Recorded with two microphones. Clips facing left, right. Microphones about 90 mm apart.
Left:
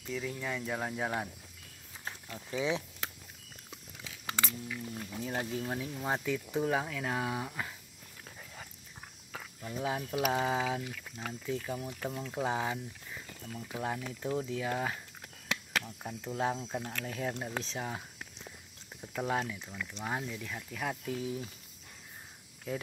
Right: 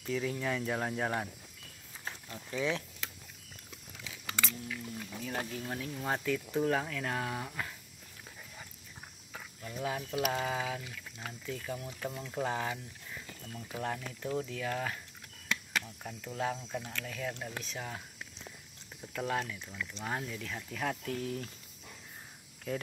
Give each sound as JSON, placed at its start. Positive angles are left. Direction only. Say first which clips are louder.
{"t": 0.0, "sound": "speech", "louder": "right 3 dB", "side_deg": 5}
{"t": 2.3, "sound": "speech", "louder": "left 1 dB", "side_deg": 15}
{"t": 4.4, "sound": "speech", "louder": "even", "side_deg": 10}
{"t": 4.9, "sound": "speech", "louder": "left 2 dB", "side_deg": 20}
{"t": 9.6, "sound": "speech", "louder": "left 2 dB", "side_deg": 25}
{"t": 18.9, "sound": "speech", "louder": "left 1 dB", "side_deg": 15}